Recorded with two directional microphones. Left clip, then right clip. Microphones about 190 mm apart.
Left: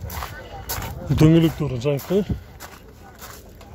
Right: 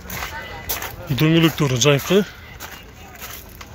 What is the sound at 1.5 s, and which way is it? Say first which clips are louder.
Speech: right 7 dB; centre (ahead or behind).